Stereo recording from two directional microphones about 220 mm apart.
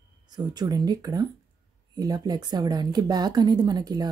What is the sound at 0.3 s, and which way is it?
A woman's voice, 20° right (ahead or behind).